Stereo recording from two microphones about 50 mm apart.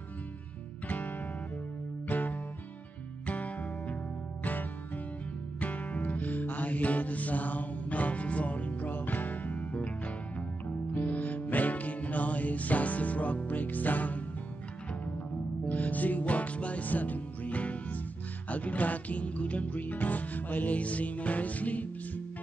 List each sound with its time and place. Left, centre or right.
0.8 s music: left
15.7 s music: left